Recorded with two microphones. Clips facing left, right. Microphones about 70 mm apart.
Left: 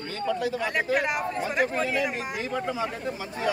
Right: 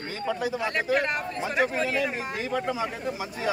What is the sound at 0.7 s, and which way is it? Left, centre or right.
Speech, centre.